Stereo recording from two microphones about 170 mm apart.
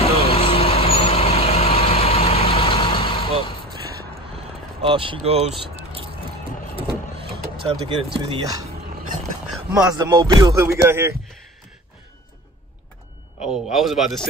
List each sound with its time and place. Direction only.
0.3 s vehicle: 35° left (ahead or behind)
4.8 s speech: 30° right (ahead or behind)
6.7 s vehicle: 35° right (ahead or behind)
7.8 s speech: 30° right (ahead or behind)
9.7 s music: 5° right (ahead or behind)
10.1 s music: 15° right (ahead or behind)
13.4 s a man's voice: 5° right (ahead or behind)